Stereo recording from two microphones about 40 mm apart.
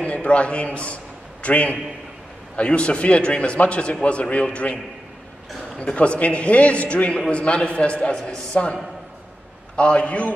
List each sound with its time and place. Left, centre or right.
0.0 s a man's voice: left
5.9 s a man's voice: left
9.8 s a man's voice: left